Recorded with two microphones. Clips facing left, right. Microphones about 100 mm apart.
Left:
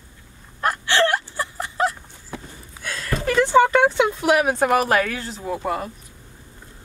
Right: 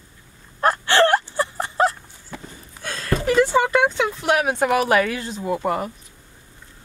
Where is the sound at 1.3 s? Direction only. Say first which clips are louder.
Right 4 dB; 30° right (ahead or behind).